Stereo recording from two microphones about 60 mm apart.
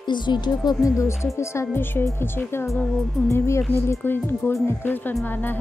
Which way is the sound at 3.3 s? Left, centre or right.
Left.